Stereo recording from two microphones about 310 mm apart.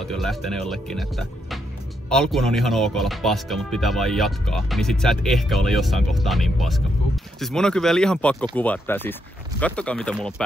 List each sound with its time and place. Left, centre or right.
0.1 s speech: centre